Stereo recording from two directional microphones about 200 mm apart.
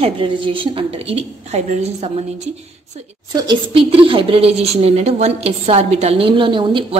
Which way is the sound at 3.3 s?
20° right (ahead or behind).